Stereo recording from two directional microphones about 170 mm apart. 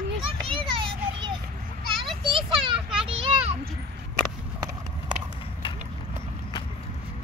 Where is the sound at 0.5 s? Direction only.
30° right (ahead or behind).